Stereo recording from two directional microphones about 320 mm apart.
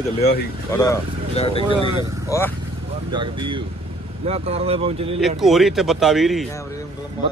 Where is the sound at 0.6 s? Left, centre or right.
Centre.